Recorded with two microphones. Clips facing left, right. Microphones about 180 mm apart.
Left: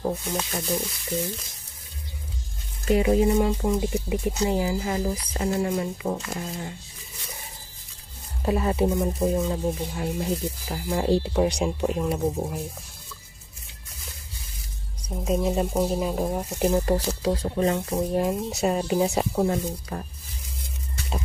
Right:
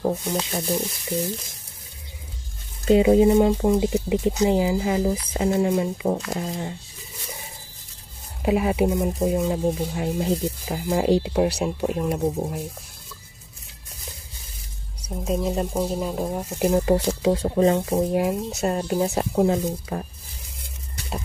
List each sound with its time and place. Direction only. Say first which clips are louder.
0.0 s speech: right 3 dB; 25° right (ahead or behind)
2.8 s speech: right 5 dB; 25° right (ahead or behind)
8.4 s speech: right 3 dB; 15° right (ahead or behind)
11.3 s speech: right 1 dB; 5° right (ahead or behind)
15.2 s speech: even; centre (ahead or behind)
16.7 s speech: right 3 dB; 15° right (ahead or behind)
17.9 s speech: right 3 dB; 10° right (ahead or behind)
19.3 s speech: right 4 dB; 20° right (ahead or behind)